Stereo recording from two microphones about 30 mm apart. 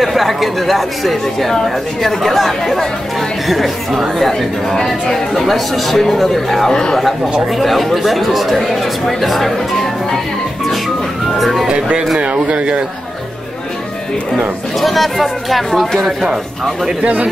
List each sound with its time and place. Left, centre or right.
0.0 s speech: centre
4.3 s speech: centre
6.7 s speech: left
7.5 s speech: centre
11.3 s speech: centre
12.4 s a man's voice: right
14.8 s speech: centre
17.0 s speech: right